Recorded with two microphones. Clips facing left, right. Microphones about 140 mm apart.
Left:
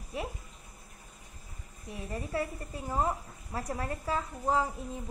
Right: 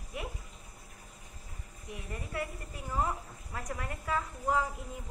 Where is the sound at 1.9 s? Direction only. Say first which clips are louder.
Left 5 dB; 30° left (ahead or behind).